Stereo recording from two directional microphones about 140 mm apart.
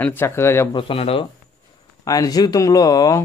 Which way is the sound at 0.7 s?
40° left (ahead or behind).